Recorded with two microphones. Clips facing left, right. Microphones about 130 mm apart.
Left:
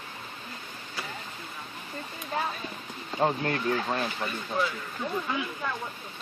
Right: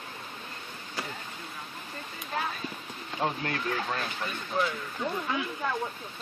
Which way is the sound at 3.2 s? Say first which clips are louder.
Left 4 dB; 30° left (ahead or behind).